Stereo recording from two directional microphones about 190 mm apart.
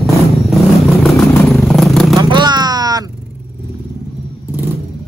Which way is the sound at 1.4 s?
Centre (ahead or behind).